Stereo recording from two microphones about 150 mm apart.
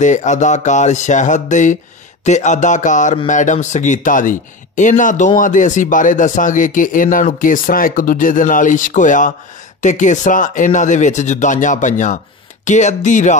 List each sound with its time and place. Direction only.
0.0 s speech: 55° left (ahead or behind)